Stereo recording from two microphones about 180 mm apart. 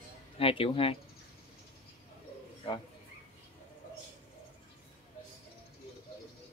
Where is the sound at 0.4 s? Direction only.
30° left (ahead or behind).